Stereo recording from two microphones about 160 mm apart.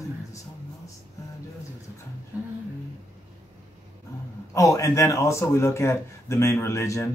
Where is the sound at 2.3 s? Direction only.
10° right (ahead or behind).